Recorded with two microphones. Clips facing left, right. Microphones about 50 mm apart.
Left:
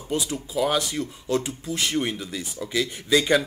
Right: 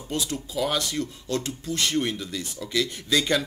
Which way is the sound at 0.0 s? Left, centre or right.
Centre.